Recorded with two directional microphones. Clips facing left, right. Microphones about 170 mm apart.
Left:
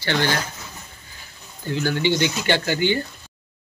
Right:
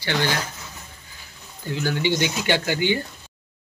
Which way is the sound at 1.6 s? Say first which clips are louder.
Left 2 dB; 5° right (ahead or behind).